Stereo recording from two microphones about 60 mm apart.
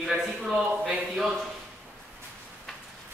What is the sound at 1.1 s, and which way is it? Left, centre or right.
Speech, centre.